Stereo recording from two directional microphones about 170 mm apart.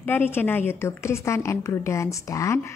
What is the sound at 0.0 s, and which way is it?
A woman's voice, 10° left (ahead or behind).